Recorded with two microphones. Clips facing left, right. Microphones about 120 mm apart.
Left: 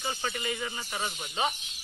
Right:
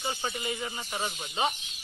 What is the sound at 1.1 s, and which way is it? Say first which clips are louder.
Speech: right 1 dB; centre (ahead or behind).